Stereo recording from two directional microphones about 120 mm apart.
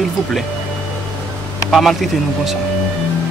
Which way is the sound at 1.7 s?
Centre (ahead or behind).